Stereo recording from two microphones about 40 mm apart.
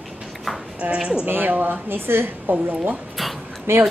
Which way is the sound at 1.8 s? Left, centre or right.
Right.